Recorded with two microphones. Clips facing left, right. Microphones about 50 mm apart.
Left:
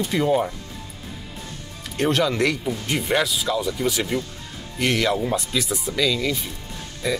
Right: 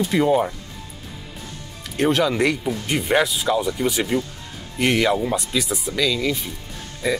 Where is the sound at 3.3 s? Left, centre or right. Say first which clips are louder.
Right 3 dB; right.